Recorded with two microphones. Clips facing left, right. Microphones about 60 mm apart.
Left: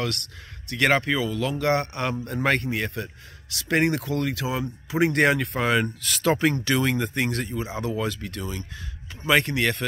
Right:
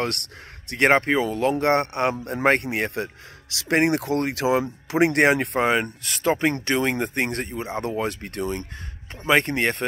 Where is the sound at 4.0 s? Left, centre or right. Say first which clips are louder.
Right 4 dB; right.